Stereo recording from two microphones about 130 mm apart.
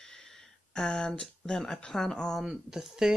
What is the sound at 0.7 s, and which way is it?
Speech, 5° left (ahead or behind).